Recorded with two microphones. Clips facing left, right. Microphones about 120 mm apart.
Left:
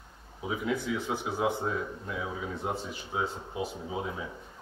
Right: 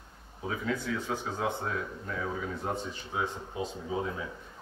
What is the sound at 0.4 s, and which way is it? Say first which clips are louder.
Speech: left 2 dB; 15° left (ahead or behind).